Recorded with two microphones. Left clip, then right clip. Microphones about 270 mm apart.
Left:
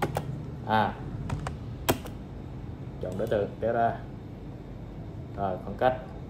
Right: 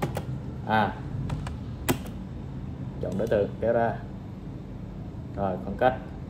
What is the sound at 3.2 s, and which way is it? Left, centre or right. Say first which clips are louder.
Speech: right 3 dB; centre.